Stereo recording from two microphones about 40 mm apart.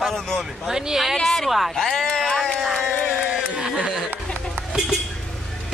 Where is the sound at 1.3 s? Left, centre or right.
Centre.